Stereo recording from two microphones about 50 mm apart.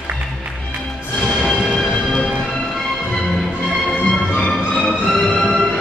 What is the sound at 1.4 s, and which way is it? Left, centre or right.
Music, centre.